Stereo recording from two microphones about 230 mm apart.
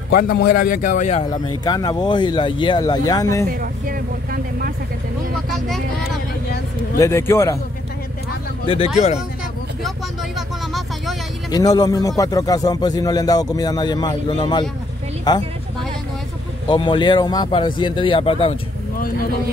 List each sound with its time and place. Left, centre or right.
0.1 s speech: left
1.6 s speech: centre
3.4 s speech: right
5.5 s speech: centre
7.0 s speech: centre
8.6 s speech: left
9.8 s vehicle: centre
11.5 s speech: centre
16.6 s speech: left